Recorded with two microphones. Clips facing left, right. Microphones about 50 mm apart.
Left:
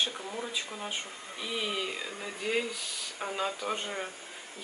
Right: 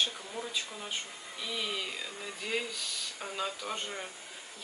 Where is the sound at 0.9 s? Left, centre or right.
Centre.